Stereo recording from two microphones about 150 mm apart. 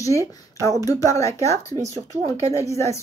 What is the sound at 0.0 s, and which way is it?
Speech, 20° left (ahead or behind).